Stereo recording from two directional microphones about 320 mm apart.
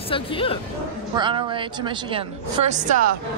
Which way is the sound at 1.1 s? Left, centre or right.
Centre.